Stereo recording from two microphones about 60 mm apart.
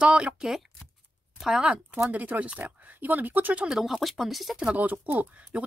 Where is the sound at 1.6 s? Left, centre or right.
Centre.